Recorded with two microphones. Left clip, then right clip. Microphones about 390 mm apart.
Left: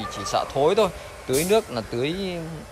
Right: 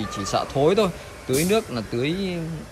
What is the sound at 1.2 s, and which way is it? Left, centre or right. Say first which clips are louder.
Speech: even; left.